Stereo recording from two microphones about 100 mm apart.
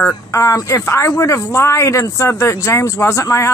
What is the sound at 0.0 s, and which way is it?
Speech, 30° left (ahead or behind).